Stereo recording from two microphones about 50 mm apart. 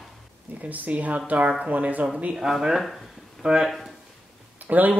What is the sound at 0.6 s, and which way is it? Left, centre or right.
Speech, right.